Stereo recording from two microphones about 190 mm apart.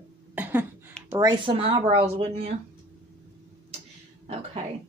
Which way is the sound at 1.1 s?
20° right (ahead or behind).